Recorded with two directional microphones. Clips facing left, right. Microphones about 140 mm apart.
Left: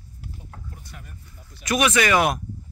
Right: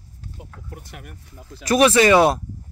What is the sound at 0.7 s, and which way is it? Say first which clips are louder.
Speech: right 5 dB; 70° right (ahead or behind).